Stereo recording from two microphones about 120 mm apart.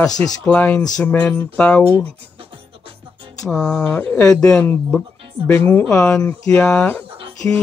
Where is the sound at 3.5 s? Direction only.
5° left (ahead or behind).